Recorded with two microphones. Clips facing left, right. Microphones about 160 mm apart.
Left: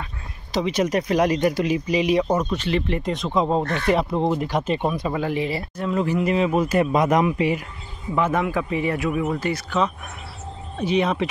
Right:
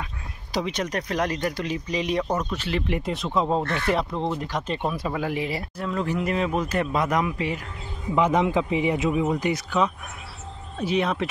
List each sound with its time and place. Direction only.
0.7 s speech: 5° left (ahead or behind)
2.5 s speech: 10° right (ahead or behind)
3.6 s speech: 45° left (ahead or behind)
3.9 s speech: 10° left (ahead or behind)
4.9 s speech: 5° right (ahead or behind)
5.9 s speech: 5° left (ahead or behind)
8.1 s speech: 15° right (ahead or behind); by 11.2 s centre (ahead or behind)